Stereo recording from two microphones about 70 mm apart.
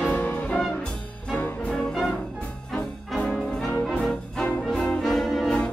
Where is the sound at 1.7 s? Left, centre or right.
Centre.